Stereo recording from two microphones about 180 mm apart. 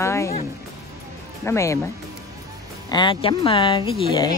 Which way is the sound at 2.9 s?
25° left (ahead or behind).